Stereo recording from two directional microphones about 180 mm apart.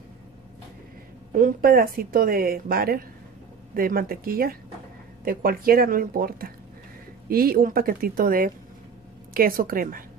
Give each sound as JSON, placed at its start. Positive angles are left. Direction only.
{"t": 1.3, "sound": "a woman's voice", "side_deg": -55}